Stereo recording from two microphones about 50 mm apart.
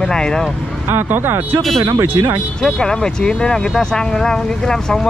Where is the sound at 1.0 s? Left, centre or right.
Right.